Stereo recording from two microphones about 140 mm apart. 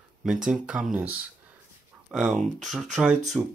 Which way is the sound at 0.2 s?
5° right (ahead or behind).